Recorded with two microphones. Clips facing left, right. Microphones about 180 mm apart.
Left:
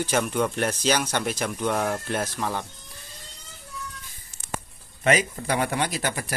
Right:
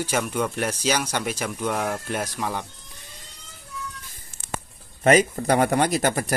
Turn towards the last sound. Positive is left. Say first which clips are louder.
# right 7 dB
turn(degrees=-45)  # may be behind; listen again after turning